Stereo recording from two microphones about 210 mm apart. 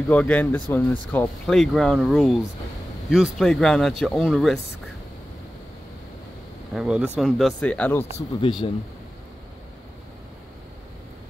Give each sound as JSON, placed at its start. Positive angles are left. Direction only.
{"t": 0.1, "sound": "speech", "side_deg": 5}
{"t": 6.7, "sound": "speech", "side_deg": -5}
{"t": 8.0, "sound": "speech", "side_deg": 25}